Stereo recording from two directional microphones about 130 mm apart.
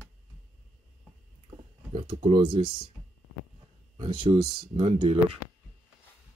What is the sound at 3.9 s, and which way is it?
Speech, 40° right (ahead or behind).